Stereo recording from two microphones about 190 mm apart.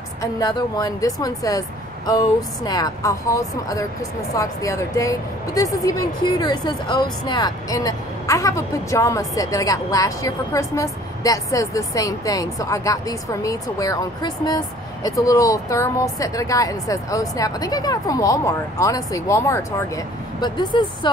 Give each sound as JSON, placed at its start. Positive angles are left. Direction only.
{"t": 0.2, "sound": "speech", "side_deg": 20}